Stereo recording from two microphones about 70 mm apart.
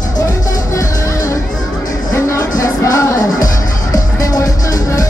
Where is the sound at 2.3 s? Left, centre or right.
Left.